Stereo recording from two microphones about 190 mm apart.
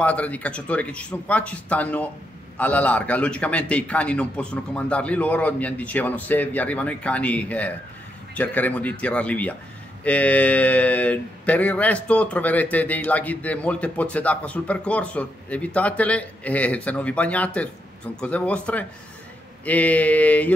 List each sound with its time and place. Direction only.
0.0 s speech: 5° left (ahead or behind)